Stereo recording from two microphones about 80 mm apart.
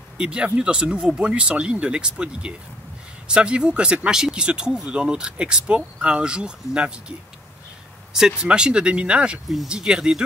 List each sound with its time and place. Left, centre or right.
0.2 s speech: centre
8.1 s speech: centre